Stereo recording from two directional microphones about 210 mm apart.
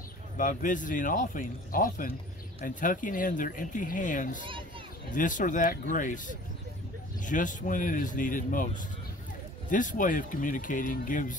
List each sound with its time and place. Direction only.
0.4 s speech: 40° left (ahead or behind)
7.2 s speech: 40° left (ahead or behind)